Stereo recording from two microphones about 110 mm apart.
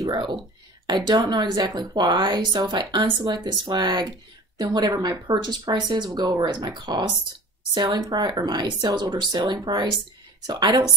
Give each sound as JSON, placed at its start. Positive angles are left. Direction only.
{"t": 0.0, "sound": "a woman's voice", "side_deg": -40}